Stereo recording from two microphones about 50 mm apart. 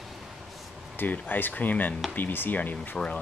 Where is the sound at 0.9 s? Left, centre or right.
Left.